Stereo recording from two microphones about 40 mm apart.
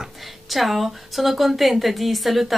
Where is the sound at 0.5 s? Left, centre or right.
Centre.